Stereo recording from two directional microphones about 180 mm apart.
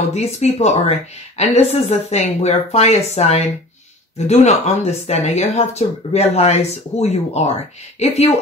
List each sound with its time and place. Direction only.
0.1 s speech: 35° left (ahead or behind)